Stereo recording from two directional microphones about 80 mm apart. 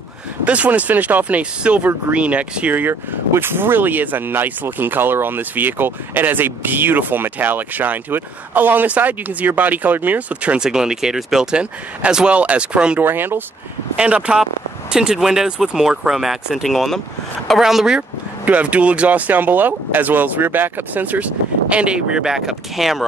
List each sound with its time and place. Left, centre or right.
0.5 s speech: centre
13.0 s speech: right
13.9 s speech: centre